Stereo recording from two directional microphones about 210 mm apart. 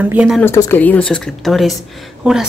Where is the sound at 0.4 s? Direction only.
10° left (ahead or behind).